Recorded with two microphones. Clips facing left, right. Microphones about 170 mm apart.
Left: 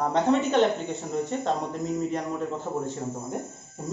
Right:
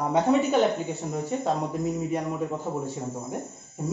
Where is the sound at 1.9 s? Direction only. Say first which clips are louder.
Even; 10° right (ahead or behind).